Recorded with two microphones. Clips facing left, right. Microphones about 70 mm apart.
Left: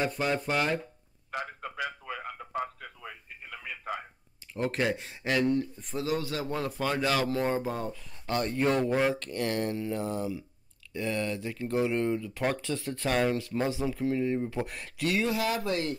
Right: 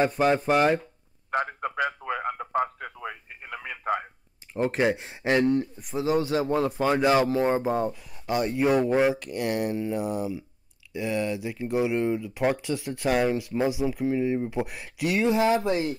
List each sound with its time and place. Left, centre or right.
0.0 s speech: right
1.3 s radio: right
4.6 s speech: right
5.8 s speech: centre
6.0 s speech: right
15.3 s speech: right